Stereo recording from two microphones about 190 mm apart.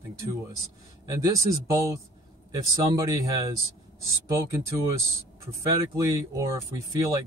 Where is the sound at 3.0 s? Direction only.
20° right (ahead or behind).